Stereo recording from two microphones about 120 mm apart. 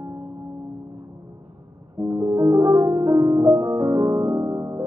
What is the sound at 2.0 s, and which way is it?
Music, 25° right (ahead or behind).